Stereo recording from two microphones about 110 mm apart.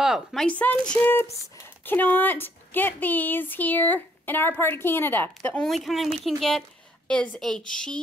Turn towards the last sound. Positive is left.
turn(degrees=5)  # may be behind; listen again after turning